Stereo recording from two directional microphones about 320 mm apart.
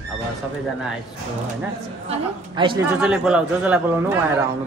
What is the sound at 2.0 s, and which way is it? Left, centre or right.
Speech, centre.